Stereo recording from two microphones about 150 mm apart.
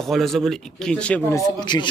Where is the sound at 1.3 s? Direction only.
30° left (ahead or behind).